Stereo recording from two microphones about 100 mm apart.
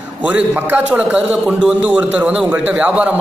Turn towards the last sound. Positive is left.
turn(degrees=-15)  # may be behind; listen again after turning